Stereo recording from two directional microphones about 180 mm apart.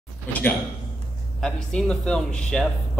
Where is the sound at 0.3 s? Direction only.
10° left (ahead or behind).